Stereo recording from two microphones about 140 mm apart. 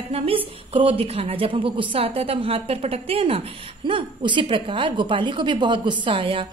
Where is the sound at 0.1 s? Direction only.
45° right (ahead or behind).